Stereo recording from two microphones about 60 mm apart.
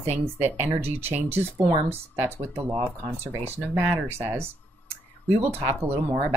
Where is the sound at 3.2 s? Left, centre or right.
Right.